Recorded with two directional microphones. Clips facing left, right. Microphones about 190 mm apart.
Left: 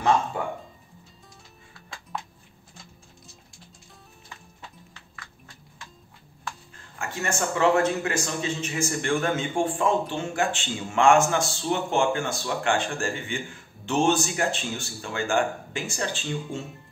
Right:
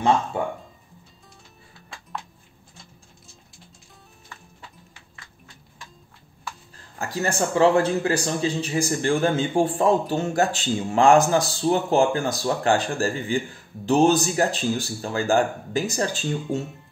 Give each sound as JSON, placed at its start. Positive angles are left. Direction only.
{"t": 0.3, "sound": "speech", "side_deg": -25}
{"t": 2.1, "sound": "a sound", "side_deg": 0}
{"t": 7.0, "sound": "a man's voice", "side_deg": -35}